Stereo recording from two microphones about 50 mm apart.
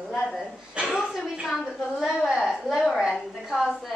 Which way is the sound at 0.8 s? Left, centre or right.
Centre.